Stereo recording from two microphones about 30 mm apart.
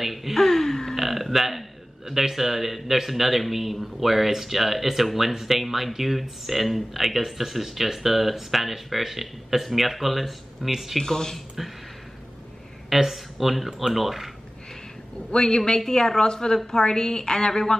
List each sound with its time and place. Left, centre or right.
0.0 s a sound: centre
0.4 s a sound: centre
0.9 s speech: centre
11.0 s a woman's voice: centre
11.3 s speech: centre
12.9 s speech: centre
15.3 s a woman's voice: left